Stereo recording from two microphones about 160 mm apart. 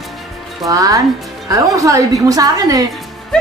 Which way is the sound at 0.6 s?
20° right (ahead or behind).